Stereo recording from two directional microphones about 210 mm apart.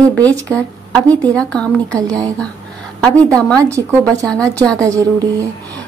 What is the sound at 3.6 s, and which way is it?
Speech, 15° right (ahead or behind).